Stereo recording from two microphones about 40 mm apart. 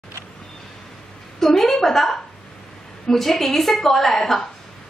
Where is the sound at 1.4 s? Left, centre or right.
Centre.